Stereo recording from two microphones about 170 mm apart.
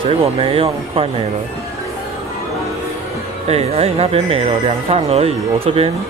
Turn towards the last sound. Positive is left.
turn(degrees=-35)  # may be behind; listen again after turning